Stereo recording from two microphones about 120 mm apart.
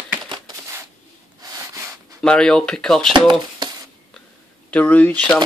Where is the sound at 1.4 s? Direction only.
30° right (ahead or behind).